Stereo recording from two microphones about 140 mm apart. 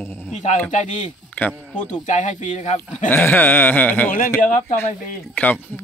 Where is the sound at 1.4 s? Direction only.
15° left (ahead or behind).